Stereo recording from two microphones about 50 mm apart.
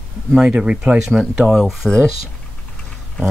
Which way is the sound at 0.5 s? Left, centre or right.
Right.